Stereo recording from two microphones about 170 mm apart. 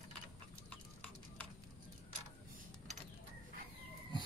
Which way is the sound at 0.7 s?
10° left (ahead or behind).